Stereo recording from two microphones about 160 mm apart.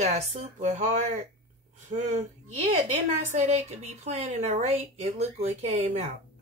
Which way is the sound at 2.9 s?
45° right (ahead or behind).